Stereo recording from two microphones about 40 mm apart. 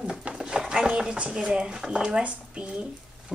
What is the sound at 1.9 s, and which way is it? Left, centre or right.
Speech, right.